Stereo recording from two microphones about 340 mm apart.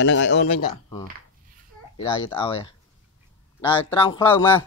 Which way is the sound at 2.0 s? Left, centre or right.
Centre.